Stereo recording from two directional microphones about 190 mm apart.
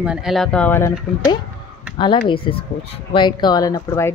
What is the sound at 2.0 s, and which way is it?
Speech, 25° left (ahead or behind).